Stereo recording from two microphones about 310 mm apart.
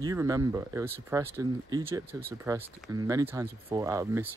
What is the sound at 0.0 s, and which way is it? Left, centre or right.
Speech, centre.